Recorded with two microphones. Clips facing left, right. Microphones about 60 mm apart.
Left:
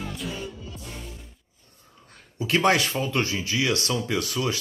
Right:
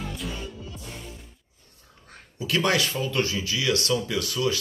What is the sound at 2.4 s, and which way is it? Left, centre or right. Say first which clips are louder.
Speech: left 3 dB; left.